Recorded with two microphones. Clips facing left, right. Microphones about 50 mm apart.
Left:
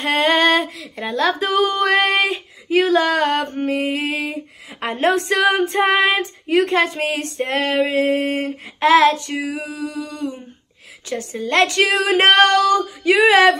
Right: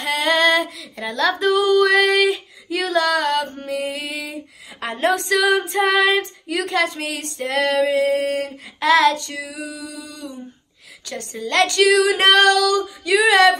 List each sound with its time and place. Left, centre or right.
0.0 s female singing: left
8.3 s child singing: left
9.3 s female singing: left
11.3 s child singing: left
11.8 s female singing: left